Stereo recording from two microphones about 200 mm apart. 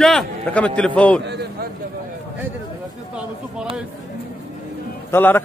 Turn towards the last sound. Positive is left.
turn(degrees=10)  # may be behind; listen again after turning